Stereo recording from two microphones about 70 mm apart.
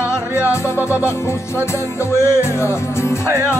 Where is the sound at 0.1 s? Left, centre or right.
Left.